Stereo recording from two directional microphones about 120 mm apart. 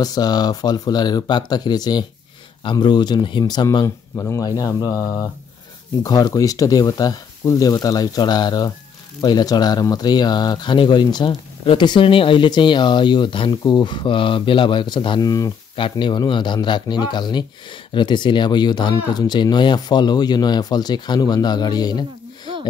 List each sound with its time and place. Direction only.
0.0 s speech: 35° left (ahead or behind)
15.7 s speech: 45° left (ahead or behind)